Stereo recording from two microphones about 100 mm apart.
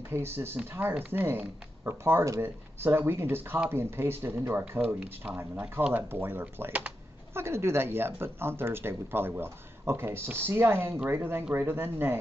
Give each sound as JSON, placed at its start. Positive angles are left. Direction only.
{"t": 0.1, "sound": "speech", "side_deg": -25}